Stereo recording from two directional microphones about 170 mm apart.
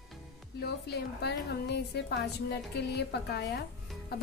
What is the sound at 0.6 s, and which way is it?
A woman's voice, 75° left (ahead or behind).